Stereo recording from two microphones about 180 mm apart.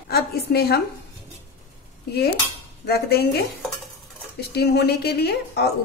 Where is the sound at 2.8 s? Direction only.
60° left (ahead or behind).